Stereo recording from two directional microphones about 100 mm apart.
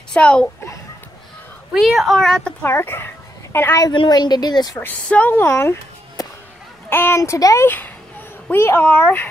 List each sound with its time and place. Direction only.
0.1 s speech: 10° left (ahead or behind)
1.7 s speech: centre (ahead or behind)
2.6 s speech: 25° left (ahead or behind)
3.9 s a woman's voice: 50° left (ahead or behind)
4.7 s speech: 15° left (ahead or behind)
6.9 s speech: 25° left (ahead or behind)
7.6 s speech: 20° left (ahead or behind)